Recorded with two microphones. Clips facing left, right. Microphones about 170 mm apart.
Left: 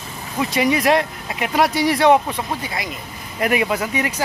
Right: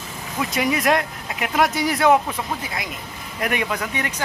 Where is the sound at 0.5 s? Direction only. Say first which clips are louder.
Left 3 dB; centre (ahead or behind).